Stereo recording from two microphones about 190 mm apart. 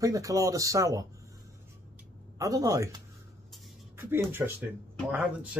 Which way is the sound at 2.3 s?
15° right (ahead or behind).